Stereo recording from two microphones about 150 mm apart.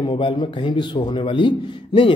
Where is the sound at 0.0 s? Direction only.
35° left (ahead or behind).